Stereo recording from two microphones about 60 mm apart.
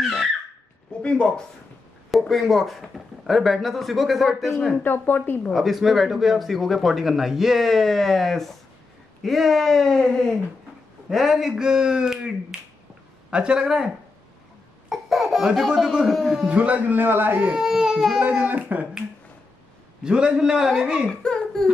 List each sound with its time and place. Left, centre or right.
0.0 s a sound: centre
1.0 s speech: centre
2.0 s speech: centre
4.8 s speech: left
5.5 s speech: centre
11.1 s speech: centre
14.9 s speech: centre
16.4 s a man's voice: right
17.4 s speech: centre
18.2 s a man's voice: right
20.0 s speech: centre
21.2 s a sound: centre